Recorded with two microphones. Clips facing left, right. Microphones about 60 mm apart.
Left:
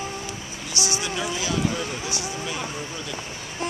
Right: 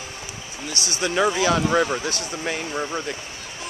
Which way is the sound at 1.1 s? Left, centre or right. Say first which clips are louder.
Right 11 dB; right.